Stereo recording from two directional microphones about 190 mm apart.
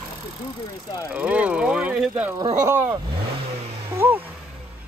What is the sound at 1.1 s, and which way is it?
Speech, 5° right (ahead or behind).